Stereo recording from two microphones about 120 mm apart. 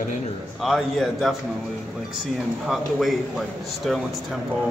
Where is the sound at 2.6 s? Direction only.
Centre (ahead or behind).